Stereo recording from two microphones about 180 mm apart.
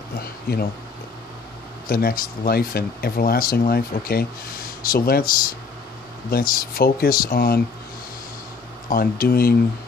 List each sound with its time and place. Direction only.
0.2 s speech: 60° left (ahead or behind)
1.9 s speech: 55° left (ahead or behind)
6.3 s speech: 55° left (ahead or behind)
8.8 s speech: 55° left (ahead or behind)